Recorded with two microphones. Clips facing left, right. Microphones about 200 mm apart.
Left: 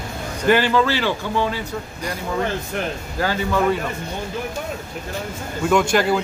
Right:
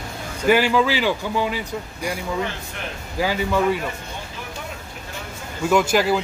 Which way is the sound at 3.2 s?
10° right (ahead or behind).